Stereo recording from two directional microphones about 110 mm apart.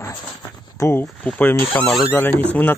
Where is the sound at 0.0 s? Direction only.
25° left (ahead or behind).